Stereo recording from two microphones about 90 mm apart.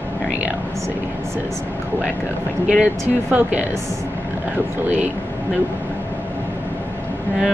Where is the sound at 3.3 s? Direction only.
15° right (ahead or behind).